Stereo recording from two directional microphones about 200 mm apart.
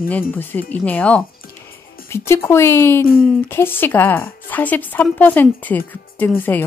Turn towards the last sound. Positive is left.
turn(degrees=10)  # may be behind; listen again after turning